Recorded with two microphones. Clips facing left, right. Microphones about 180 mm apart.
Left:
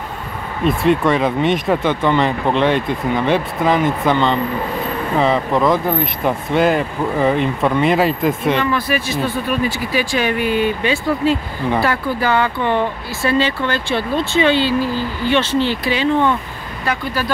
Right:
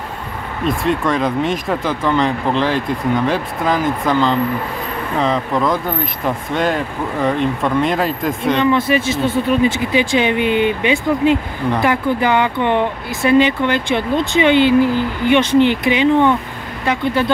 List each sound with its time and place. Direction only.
0.7 s speech: centre (ahead or behind)
8.6 s speech: 25° right (ahead or behind)